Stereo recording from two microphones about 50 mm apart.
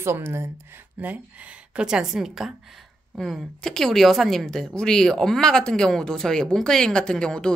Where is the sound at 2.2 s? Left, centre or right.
Centre.